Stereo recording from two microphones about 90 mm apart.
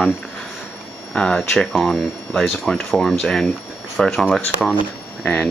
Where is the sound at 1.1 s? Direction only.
10° left (ahead or behind).